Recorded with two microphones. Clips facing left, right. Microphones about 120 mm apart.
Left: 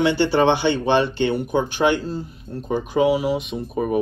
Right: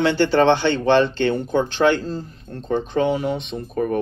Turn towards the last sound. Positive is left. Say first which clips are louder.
# even
turn(degrees=10)  # may be behind; listen again after turning